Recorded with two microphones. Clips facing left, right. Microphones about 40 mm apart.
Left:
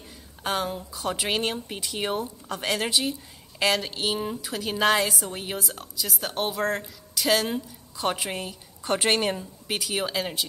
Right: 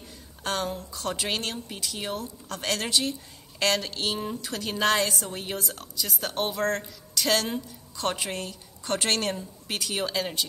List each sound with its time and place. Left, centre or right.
0.4 s a woman's voice: centre
2.5 s a woman's voice: centre